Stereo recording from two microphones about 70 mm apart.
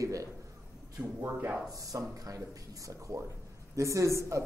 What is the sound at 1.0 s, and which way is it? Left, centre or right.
Speech, centre.